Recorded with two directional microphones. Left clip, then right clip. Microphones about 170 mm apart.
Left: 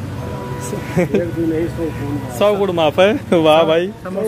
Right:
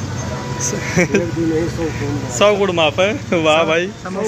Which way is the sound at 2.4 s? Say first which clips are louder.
Right 1 dB; 15° left (ahead or behind).